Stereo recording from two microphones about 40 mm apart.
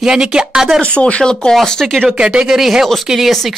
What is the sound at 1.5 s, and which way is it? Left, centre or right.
Speech, centre.